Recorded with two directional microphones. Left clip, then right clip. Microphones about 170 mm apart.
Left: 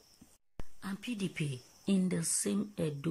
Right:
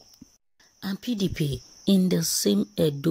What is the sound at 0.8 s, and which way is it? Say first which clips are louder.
Speech: right 10 dB; 25° right (ahead or behind).